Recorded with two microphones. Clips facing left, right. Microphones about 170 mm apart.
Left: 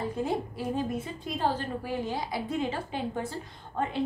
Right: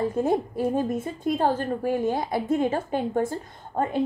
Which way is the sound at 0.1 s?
50° right (ahead or behind).